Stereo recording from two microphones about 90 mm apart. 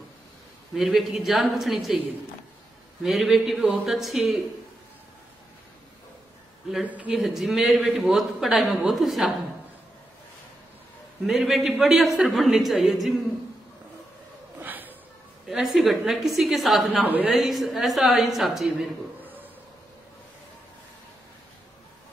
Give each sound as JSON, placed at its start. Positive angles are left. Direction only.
{"t": 0.7, "sound": "a man's voice", "side_deg": 0}
{"t": 3.0, "sound": "a man's voice", "side_deg": -5}
{"t": 6.9, "sound": "speech", "side_deg": -15}
{"t": 7.2, "sound": "a man's voice", "side_deg": 0}
{"t": 11.2, "sound": "a man's voice", "side_deg": -5}
{"t": 14.6, "sound": "a sound", "side_deg": -20}
{"t": 15.4, "sound": "a man's voice", "side_deg": -5}
{"t": 17.0, "sound": "a woman's voice", "side_deg": -20}
{"t": 17.3, "sound": "a man's voice", "side_deg": 0}